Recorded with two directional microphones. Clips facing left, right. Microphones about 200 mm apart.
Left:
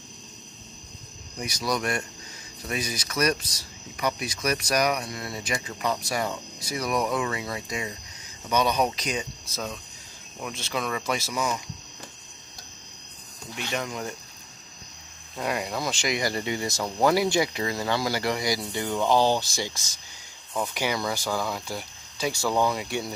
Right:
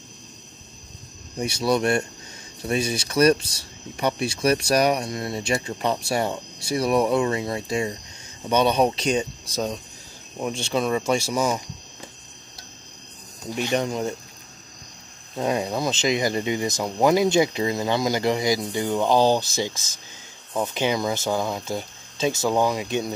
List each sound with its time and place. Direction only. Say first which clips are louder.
1.4 s speech: right 7 dB; 30° right (ahead or behind)
13.7 s speech: right 7 dB; 30° right (ahead or behind)
15.3 s speech: right 5 dB; 25° right (ahead or behind)